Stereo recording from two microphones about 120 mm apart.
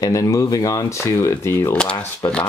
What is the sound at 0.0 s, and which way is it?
Speech, 30° left (ahead or behind).